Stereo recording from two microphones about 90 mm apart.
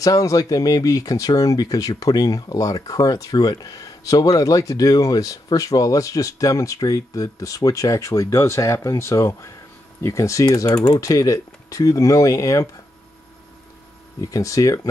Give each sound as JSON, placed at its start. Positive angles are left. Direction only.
{"t": 0.0, "sound": "speech", "side_deg": 40}
{"t": 14.3, "sound": "speech", "side_deg": 40}